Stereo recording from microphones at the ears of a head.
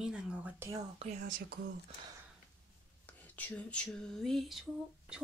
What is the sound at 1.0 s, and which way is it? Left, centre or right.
Speech, right.